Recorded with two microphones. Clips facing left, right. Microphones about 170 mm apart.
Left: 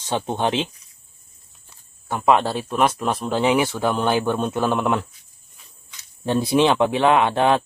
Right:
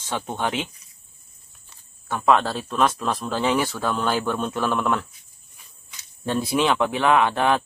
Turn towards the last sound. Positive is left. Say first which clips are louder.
# left 2 dB
turn(degrees=20)  # may be behind; listen again after turning